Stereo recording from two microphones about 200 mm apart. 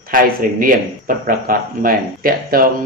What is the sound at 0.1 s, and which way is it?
Speech, 45° right (ahead or behind).